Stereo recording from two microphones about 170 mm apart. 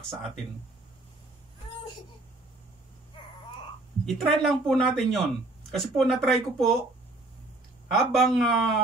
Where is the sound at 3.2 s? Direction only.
30° left (ahead or behind).